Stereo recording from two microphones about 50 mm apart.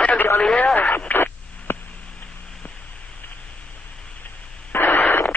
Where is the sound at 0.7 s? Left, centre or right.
Left.